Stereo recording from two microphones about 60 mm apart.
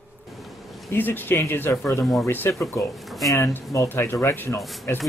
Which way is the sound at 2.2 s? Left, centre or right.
Left.